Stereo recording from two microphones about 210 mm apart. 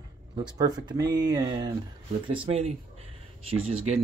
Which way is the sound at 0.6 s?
20° right (ahead or behind).